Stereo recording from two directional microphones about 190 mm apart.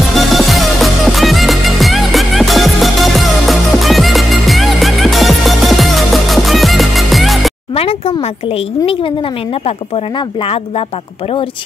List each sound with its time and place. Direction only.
0.1 s music: centre (ahead or behind)
7.7 s a woman's voice: 30° left (ahead or behind)